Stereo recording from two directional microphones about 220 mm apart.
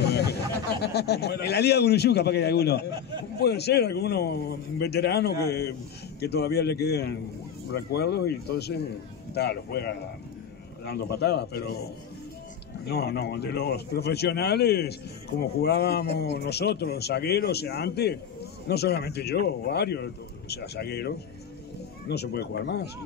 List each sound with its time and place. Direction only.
0.0 s a man's voice: 50° left (ahead or behind)
12.8 s a man's voice: 45° left (ahead or behind)